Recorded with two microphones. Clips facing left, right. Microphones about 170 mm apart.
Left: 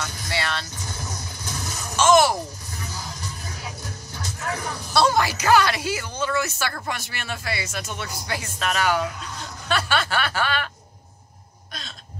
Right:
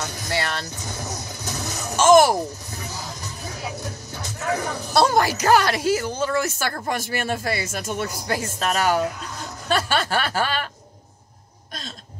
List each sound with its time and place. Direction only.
0.0 s vehicle: 45° right (ahead or behind)
4.9 s speech: 45° right (ahead or behind)
9.7 s a sound: 40° right (ahead or behind)